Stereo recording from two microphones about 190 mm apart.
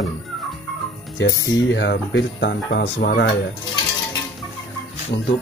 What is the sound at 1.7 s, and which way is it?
Speech, 70° left (ahead or behind).